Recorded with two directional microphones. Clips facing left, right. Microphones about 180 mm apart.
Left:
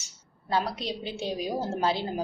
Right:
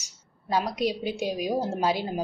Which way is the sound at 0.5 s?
15° right (ahead or behind).